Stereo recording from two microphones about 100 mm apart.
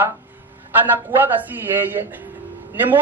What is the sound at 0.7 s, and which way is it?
A man's voice, 20° right (ahead or behind).